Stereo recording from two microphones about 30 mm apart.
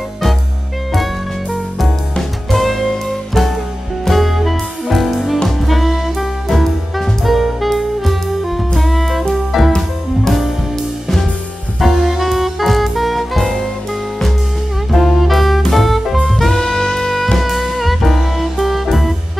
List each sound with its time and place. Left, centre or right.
2.5 s music: centre
4.1 s music: centre
11.8 s music: centre
15.0 s music: centre
16.5 s saxophone: left
17.1 s music: centre
17.4 s music: centre